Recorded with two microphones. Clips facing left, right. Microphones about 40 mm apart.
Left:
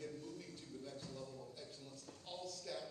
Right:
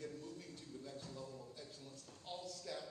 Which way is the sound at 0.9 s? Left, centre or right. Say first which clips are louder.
Even; right.